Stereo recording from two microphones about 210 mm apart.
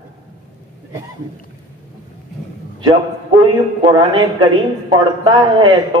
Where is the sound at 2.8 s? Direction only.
20° right (ahead or behind).